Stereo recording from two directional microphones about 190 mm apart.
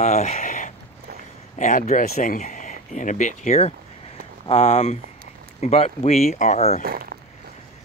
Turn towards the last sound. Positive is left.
turn(degrees=35)  # may be behind; listen again after turning